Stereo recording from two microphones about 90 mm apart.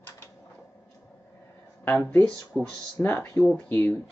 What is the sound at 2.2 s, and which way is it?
Speech, 10° left (ahead or behind).